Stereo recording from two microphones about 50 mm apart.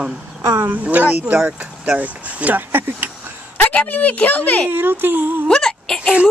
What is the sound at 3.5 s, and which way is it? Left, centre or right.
Speech, left.